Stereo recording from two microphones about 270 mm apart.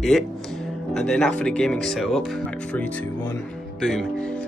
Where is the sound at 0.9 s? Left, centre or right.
Centre.